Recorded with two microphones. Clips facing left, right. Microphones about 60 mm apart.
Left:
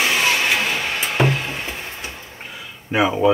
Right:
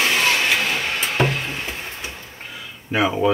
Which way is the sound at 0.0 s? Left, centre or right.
Centre.